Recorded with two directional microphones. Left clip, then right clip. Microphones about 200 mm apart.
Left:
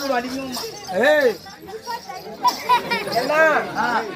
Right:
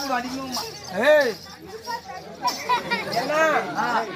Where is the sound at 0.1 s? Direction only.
10° right (ahead or behind).